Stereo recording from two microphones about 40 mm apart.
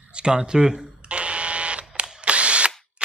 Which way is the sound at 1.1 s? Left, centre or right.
Right.